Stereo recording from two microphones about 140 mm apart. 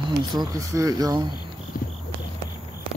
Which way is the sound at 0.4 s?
25° right (ahead or behind).